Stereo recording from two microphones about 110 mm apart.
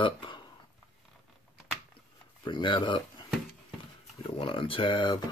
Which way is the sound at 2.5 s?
45° left (ahead or behind).